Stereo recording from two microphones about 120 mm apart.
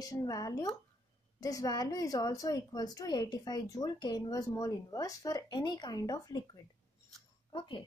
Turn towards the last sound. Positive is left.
turn(degrees=40)  # may be behind; listen again after turning